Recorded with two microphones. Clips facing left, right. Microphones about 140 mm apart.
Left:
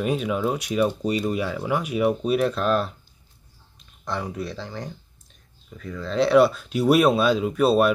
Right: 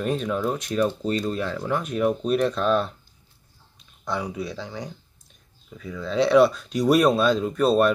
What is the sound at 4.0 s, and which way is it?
Speech, centre (ahead or behind).